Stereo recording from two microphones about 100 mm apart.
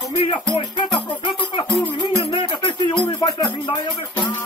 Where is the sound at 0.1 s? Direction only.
65° left (ahead or behind).